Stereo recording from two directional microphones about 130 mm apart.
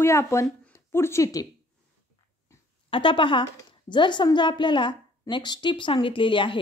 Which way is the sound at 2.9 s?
40° left (ahead or behind).